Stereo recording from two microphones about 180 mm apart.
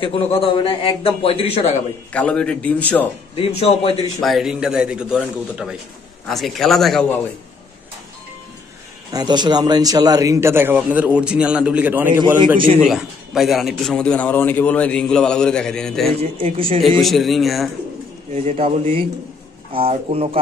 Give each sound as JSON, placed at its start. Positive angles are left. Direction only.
{"t": 0.0, "sound": "a man's voice", "side_deg": 30}
{"t": 2.1, "sound": "a man's voice", "side_deg": 5}
{"t": 3.3, "sound": "a man's voice", "side_deg": 35}
{"t": 4.2, "sound": "a man's voice", "side_deg": 0}
{"t": 9.1, "sound": "a man's voice", "side_deg": -25}
{"t": 16.2, "sound": "speech", "side_deg": -30}
{"t": 17.0, "sound": "a man's voice", "side_deg": 0}
{"t": 18.4, "sound": "speech", "side_deg": -30}